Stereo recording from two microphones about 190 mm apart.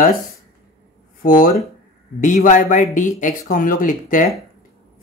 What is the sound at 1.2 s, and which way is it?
Speech, 45° left (ahead or behind).